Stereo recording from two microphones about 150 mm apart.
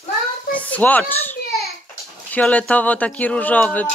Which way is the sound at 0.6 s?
10° left (ahead or behind).